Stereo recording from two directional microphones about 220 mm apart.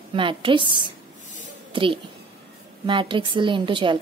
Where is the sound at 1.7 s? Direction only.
25° right (ahead or behind).